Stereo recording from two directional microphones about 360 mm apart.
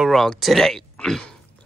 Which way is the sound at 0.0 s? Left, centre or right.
Centre.